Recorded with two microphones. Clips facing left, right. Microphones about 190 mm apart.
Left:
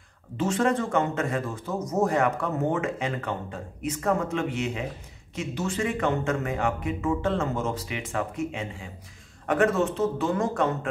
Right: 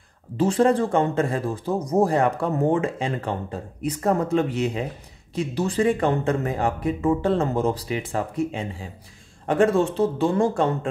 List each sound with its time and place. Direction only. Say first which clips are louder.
0.4 s a man's voice: right 5 dB; 35° right (ahead or behind)